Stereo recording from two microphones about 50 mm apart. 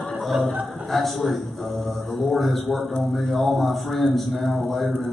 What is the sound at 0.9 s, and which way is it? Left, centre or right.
A man's voice, centre.